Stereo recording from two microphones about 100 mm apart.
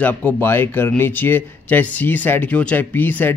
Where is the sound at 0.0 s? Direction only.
15° left (ahead or behind).